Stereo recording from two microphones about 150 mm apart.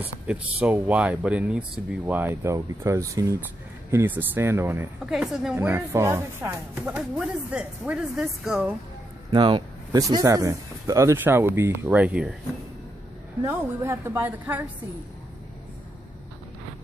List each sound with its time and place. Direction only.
0.0 s speech: 10° right (ahead or behind)
5.0 s speech: 5° right (ahead or behind)
5.7 s speech: 15° right (ahead or behind)
6.7 s speech: 5° right (ahead or behind)
9.3 s speech: 30° right (ahead or behind); by 12.4 s 5° right (ahead or behind)
13.5 s speech: 15° right (ahead or behind)